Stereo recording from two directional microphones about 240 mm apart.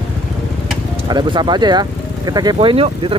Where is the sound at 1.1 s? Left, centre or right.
Centre.